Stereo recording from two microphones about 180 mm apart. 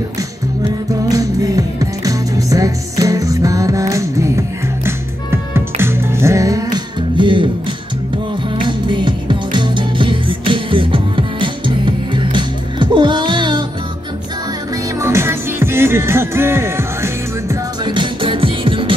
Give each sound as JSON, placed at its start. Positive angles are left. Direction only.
{"t": 1.0, "sound": "music", "side_deg": -20}
{"t": 8.5, "sound": "music", "side_deg": -25}
{"t": 15.0, "sound": "music", "side_deg": -15}